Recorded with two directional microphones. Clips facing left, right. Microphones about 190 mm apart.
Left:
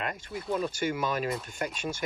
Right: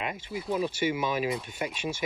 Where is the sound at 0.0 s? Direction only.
5° right (ahead or behind).